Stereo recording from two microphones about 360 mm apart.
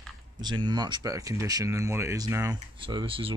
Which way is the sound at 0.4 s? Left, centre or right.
Centre.